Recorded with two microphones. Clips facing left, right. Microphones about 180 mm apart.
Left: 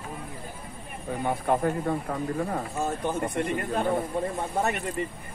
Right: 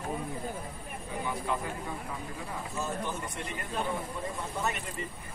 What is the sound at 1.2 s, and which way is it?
A man's voice, 50° left (ahead or behind).